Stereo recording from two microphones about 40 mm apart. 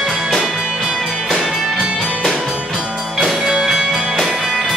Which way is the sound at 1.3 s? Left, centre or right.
Centre.